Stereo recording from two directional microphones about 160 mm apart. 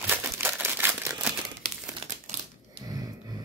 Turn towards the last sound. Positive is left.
turn(degrees=-25)  # may be behind; listen again after turning